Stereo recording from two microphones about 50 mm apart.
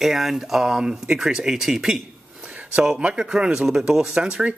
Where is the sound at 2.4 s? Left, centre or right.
Right.